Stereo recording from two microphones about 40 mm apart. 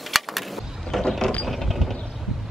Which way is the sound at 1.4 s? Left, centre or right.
Centre.